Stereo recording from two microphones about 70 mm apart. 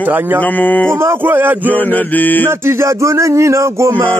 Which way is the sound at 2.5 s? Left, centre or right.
Right.